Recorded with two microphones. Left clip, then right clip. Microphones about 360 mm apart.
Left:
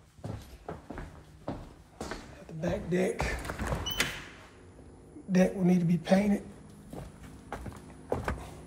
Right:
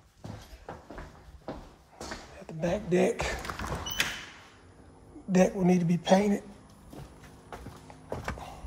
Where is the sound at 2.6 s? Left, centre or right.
Right.